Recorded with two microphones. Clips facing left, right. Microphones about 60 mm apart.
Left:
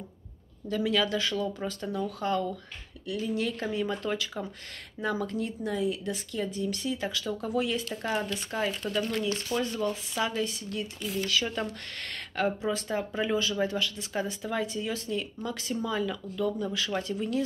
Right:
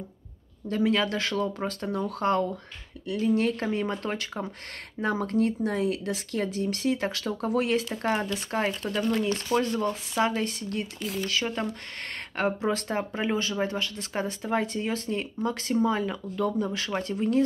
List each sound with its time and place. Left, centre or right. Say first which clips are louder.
0.7 s speech: right 2 dB; right
9.2 s speech: right 4 dB; right
11.6 s speech: right 2 dB; right